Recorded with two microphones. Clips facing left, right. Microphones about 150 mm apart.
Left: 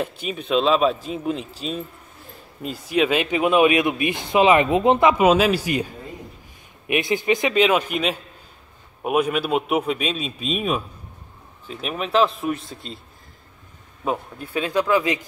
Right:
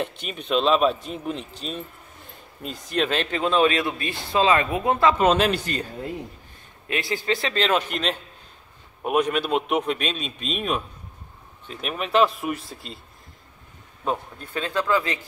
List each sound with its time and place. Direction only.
0.0 s a man's voice: 5° left (ahead or behind); by 5.1 s 20° left (ahead or behind)
5.1 s a man's voice: 5° left (ahead or behind)
14.0 s a man's voice: 10° left (ahead or behind)